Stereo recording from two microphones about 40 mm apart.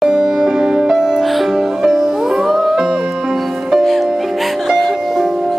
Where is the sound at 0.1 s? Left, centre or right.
Right.